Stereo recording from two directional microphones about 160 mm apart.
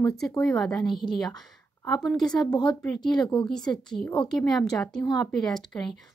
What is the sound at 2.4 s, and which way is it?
Speech, 25° left (ahead or behind).